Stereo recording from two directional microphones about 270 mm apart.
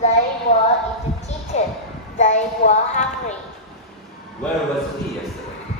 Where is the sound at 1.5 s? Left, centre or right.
Left.